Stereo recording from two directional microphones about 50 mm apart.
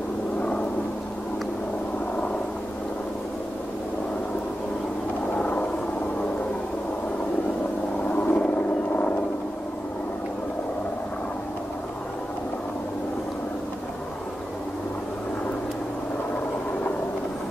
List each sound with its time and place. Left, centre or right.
5.4 s vehicle: left
8.1 s vehicle: left